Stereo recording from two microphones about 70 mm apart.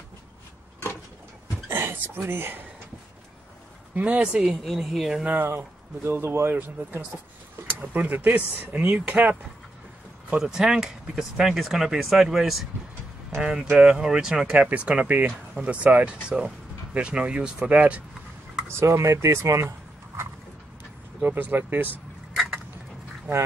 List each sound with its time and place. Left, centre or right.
1.7 s speech: right
3.9 s speech: right
4.4 s speech: centre
5.4 s speech: right
6.5 s speech: right
10.4 s speech: centre
18.8 s speech: right
21.2 s speech: right
22.3 s a sound: centre